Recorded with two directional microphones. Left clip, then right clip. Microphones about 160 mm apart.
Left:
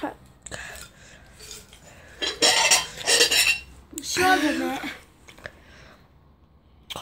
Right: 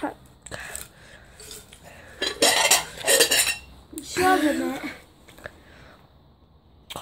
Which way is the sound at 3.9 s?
Centre (ahead or behind).